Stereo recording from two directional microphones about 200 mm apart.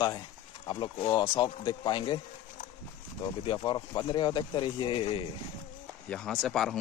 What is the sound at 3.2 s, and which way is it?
Speech, 25° left (ahead or behind).